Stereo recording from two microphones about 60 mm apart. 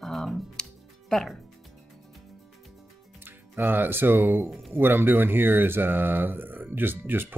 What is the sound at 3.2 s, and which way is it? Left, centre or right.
Speech, right.